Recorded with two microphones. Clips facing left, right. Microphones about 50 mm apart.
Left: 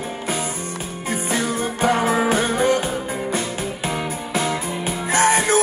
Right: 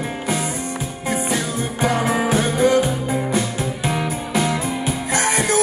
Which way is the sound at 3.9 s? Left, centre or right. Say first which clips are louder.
Right 3 dB; centre.